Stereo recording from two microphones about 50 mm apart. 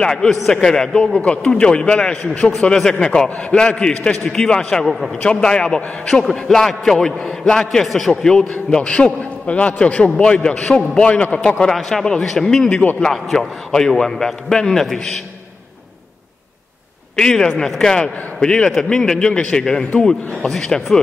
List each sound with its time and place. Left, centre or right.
0.0 s a man's voice: centre
3.4 s a man's voice: left; by 7.2 s centre
7.2 s a man's voice: left
7.5 s a man's voice: centre; by 11.5 s left
11.6 s a man's voice: centre
17.2 s a man's voice: centre